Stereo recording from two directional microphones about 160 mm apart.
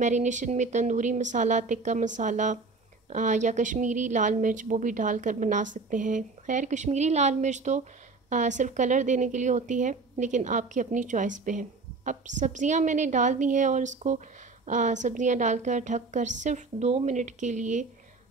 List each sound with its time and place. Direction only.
0.0 s a woman's voice: 50° right (ahead or behind)